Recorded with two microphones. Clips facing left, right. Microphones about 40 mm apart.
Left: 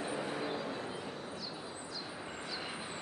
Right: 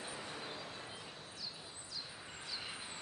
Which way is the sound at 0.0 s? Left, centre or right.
Left.